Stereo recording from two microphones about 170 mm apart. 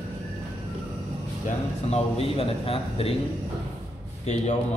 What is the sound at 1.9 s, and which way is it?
Speech, 35° left (ahead or behind).